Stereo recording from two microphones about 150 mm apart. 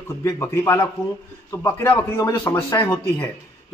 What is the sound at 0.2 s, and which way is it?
Speech, 15° left (ahead or behind).